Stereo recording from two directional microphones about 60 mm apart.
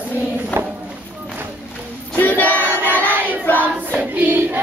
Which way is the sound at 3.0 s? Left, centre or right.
Right.